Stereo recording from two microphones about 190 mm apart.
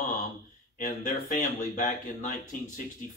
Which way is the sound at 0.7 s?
45° left (ahead or behind).